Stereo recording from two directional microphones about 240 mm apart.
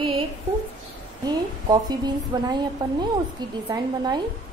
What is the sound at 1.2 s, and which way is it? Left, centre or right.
A woman's voice, centre.